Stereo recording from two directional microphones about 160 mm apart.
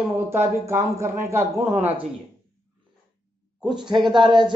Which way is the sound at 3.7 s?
30° right (ahead or behind).